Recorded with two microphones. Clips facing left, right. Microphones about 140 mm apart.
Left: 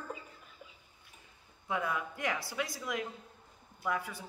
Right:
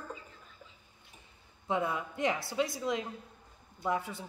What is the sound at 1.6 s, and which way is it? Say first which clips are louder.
Speech: right 3 dB; 25° right (ahead or behind).